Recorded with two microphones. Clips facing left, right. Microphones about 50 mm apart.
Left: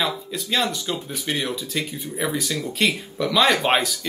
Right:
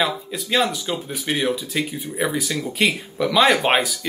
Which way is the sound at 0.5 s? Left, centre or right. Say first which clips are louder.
Right 3 dB; centre.